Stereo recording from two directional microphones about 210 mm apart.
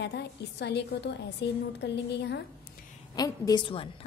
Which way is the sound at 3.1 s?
20° left (ahead or behind).